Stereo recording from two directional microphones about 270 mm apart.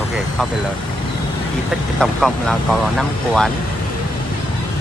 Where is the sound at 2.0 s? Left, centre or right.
Centre.